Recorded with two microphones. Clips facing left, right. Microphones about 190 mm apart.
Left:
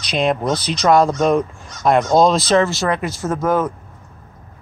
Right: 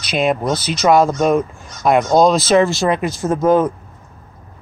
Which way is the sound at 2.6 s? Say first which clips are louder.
Right 3 dB; 15° right (ahead or behind).